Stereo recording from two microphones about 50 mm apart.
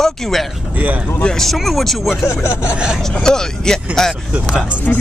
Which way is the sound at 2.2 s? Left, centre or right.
Left.